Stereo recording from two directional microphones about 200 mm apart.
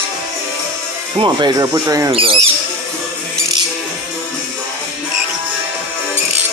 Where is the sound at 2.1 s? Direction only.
25° right (ahead or behind).